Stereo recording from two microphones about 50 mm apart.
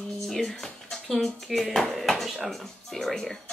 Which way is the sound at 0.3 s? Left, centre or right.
Centre.